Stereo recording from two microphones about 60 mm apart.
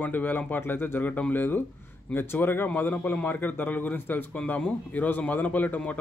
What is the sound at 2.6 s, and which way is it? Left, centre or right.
Speech, left.